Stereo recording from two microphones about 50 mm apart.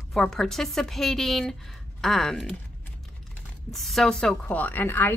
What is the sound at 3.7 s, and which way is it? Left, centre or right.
Speech, centre.